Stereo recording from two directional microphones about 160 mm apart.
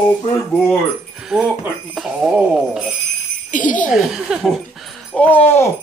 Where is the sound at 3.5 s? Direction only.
55° left (ahead or behind).